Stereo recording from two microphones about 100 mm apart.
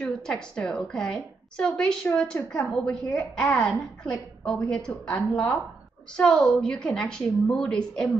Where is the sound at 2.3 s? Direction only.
30° left (ahead or behind).